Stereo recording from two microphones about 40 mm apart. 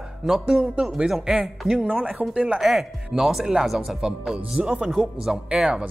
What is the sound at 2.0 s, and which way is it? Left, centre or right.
Speech, right.